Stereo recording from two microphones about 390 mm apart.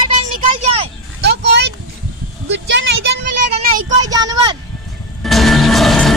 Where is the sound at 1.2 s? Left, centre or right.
Right.